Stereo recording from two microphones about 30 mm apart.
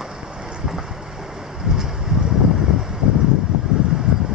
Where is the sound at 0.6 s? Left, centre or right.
Centre.